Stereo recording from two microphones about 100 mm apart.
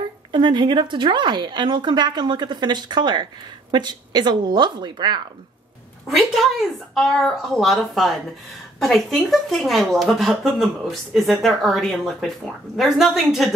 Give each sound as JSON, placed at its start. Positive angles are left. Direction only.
{"t": 0.3, "sound": "a woman's voice", "side_deg": -50}
{"t": 6.0, "sound": "speech", "side_deg": 0}